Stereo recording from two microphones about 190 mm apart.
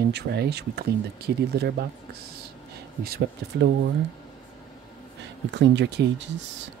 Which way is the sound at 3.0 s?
55° right (ahead or behind).